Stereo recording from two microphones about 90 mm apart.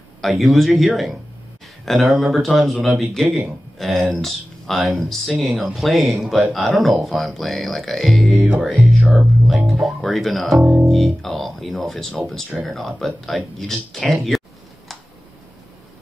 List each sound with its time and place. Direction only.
0.2 s speech: centre (ahead or behind)
8.7 s speech: 15° right (ahead or behind)
9.7 s speech: centre (ahead or behind)